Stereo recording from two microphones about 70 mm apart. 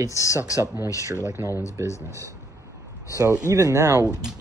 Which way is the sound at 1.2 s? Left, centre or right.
Right.